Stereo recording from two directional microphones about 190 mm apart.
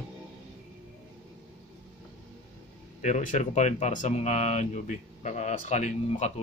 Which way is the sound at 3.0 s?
40° left (ahead or behind).